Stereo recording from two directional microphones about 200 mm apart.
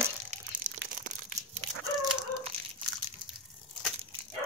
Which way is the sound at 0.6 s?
60° right (ahead or behind).